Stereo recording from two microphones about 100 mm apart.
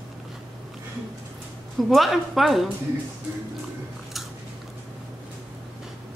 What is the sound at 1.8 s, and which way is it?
Speech, centre (ahead or behind).